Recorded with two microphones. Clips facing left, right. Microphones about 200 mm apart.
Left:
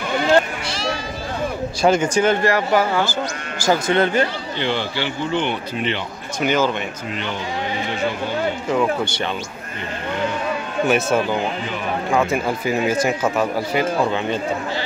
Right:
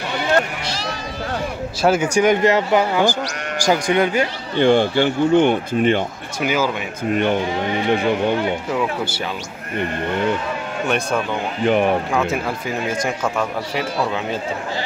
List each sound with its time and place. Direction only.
0.7 s a sound: 35° right (ahead or behind)
1.8 s speech: 5° right (ahead or behind)
4.6 s speech: 50° right (ahead or behind)
6.4 s speech: 5° right (ahead or behind)
7.1 s speech: 55° right (ahead or behind)
8.6 s speech: 5° right (ahead or behind)
10.9 s speech: 5° left (ahead or behind)
11.6 s speech: 60° right (ahead or behind)
12.1 s speech: centre (ahead or behind)